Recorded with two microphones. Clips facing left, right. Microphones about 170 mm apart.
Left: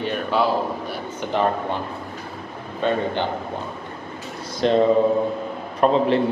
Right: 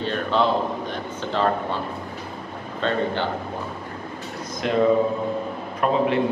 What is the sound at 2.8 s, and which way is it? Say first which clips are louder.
Speech: left 3 dB; 15° left (ahead or behind).